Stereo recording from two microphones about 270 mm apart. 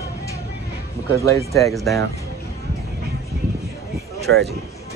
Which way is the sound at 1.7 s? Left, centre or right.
Centre.